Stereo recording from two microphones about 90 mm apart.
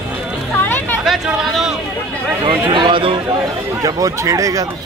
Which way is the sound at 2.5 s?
60° right (ahead or behind).